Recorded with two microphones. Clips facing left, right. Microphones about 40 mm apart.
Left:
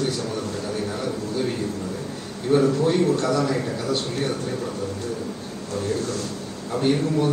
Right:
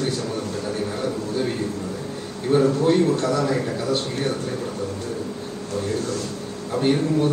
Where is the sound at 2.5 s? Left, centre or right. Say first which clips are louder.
Right 1 dB; right.